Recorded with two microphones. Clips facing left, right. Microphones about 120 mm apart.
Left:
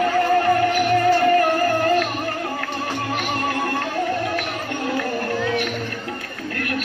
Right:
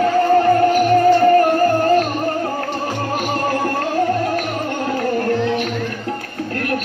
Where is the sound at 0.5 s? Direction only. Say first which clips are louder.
Right 5 dB; 30° right (ahead or behind).